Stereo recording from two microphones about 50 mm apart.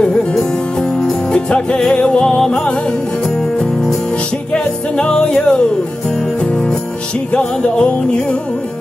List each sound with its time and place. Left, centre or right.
0.0 s music: centre
4.5 s music: centre
7.3 s music: centre